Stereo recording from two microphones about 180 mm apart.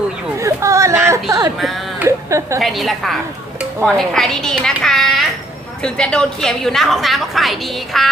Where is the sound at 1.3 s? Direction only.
20° right (ahead or behind).